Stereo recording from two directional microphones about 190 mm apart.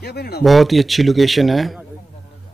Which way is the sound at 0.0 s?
60° left (ahead or behind).